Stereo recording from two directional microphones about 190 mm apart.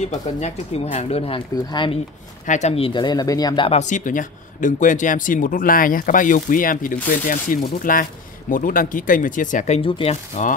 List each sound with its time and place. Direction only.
0.0 s speech: 35° left (ahead or behind)
2.4 s speech: 40° left (ahead or behind)
9.8 s speech: 30° left (ahead or behind)